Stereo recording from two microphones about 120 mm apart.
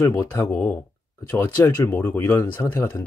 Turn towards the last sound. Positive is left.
turn(degrees=20)  # may be behind; listen again after turning